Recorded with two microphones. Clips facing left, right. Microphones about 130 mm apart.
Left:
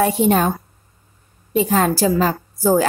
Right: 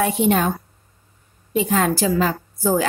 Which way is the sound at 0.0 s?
35° left (ahead or behind).